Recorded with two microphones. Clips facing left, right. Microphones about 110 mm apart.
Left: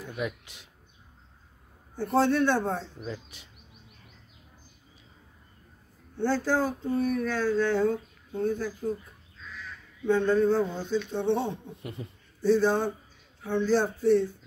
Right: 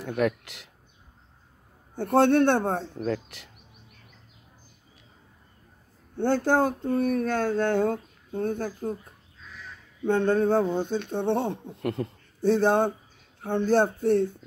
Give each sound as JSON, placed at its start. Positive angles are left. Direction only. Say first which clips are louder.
{"t": 0.0, "sound": "speech", "louder": "right 8 dB", "side_deg": -70}
{"t": 2.0, "sound": "speech", "louder": "right 4 dB", "side_deg": -60}
{"t": 6.1, "sound": "speech", "louder": "right 3 dB", "side_deg": -60}
{"t": 10.0, "sound": "speech", "louder": "right 1 dB", "side_deg": -55}